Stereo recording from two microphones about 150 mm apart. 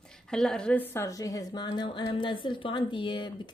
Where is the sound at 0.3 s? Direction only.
5° left (ahead or behind).